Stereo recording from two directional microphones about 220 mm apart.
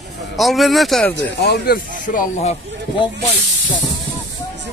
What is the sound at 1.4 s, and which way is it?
Speech, 45° left (ahead or behind).